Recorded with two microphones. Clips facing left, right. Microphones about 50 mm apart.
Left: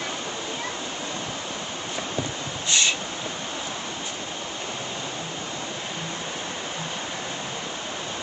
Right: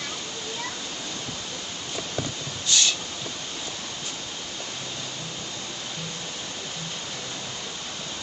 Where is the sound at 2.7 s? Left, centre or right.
Left.